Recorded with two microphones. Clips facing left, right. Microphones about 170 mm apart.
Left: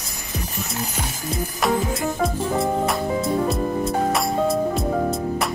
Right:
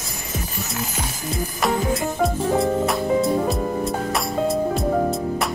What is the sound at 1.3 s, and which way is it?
Music, centre (ahead or behind).